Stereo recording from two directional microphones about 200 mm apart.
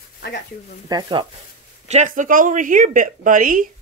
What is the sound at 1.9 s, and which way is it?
Speech, 40° right (ahead or behind).